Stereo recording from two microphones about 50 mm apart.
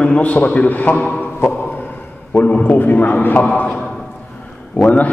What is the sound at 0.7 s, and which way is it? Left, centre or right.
Speech, left.